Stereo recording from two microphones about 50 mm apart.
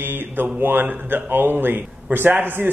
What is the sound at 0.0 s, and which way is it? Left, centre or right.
A man's voice, right.